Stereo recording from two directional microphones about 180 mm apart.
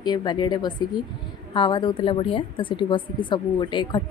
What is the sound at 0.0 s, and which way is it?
Speech, 25° left (ahead or behind).